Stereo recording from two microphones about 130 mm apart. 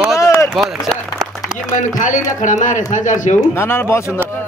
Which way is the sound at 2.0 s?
80° left.